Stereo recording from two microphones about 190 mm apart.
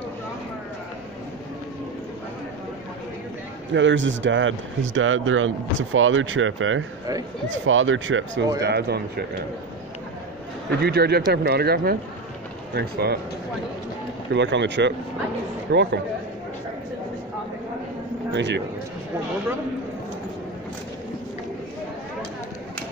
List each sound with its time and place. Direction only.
3.7 s speech: 75° right (ahead or behind)
8.6 s speech: 60° right (ahead or behind)
10.7 s speech: 55° right (ahead or behind)
14.3 s speech: 70° right (ahead or behind)
18.3 s a man's voice: 70° right (ahead or behind)